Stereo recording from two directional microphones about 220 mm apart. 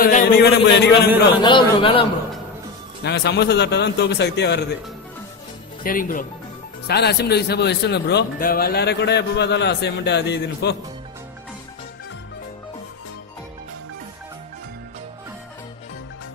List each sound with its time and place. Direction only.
0.0 s a man's voice: 45° left (ahead or behind)
1.4 s a man's voice: 20° left (ahead or behind)
3.0 s a man's voice: 50° left (ahead or behind)
5.9 s a man's voice: 40° left (ahead or behind)